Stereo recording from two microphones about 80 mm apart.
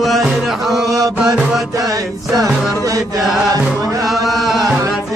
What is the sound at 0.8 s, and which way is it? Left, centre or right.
Mantra, right.